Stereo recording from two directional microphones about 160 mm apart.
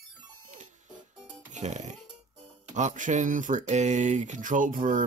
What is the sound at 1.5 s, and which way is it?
Speech, 45° right (ahead or behind).